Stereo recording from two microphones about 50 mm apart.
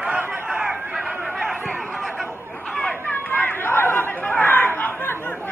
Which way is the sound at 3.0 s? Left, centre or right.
Left.